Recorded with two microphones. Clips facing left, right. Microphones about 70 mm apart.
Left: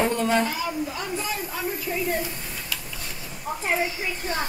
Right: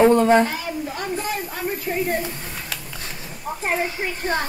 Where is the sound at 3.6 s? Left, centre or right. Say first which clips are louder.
Right 2 dB; right.